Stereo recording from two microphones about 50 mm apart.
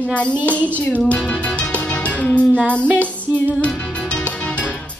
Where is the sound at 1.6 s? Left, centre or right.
Left.